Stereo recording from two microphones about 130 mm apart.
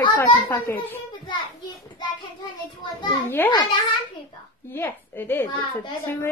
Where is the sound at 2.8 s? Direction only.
35° left (ahead or behind).